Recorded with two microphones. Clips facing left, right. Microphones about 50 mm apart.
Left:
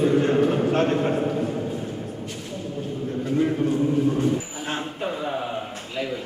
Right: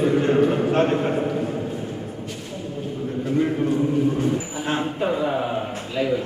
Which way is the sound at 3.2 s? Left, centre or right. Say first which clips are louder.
Right 1 dB; centre.